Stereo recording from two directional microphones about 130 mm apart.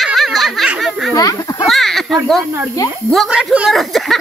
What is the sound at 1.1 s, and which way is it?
Speech, 25° left (ahead or behind).